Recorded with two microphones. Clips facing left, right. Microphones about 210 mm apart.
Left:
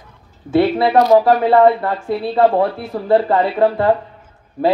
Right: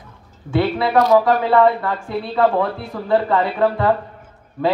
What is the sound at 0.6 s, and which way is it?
A man's voice, 30° left (ahead or behind).